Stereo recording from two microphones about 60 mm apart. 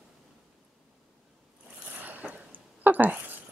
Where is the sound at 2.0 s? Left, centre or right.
Right.